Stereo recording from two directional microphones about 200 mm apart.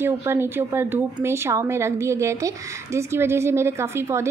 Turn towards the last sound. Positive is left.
turn(degrees=-15)  # may be behind; listen again after turning